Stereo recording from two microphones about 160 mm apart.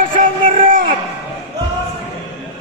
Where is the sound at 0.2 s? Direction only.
55° right (ahead or behind).